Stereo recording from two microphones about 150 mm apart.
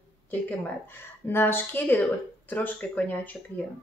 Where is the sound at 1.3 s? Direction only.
15° left (ahead or behind).